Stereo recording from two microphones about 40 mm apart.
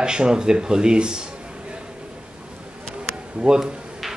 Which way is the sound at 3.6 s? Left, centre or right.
Centre.